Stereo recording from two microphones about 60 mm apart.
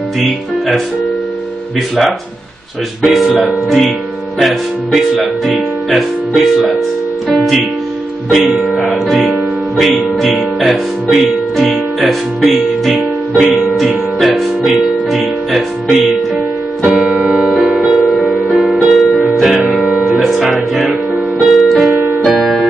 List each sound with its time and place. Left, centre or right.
3.0 s speech: centre
8.4 s speech: centre
10.2 s music: centre
10.7 s speech: centre
12.9 s music: right
13.7 s music: centre
16.8 s keyboard: centre
17.2 s music: centre
21.4 s piano: centre
22.4 s music: centre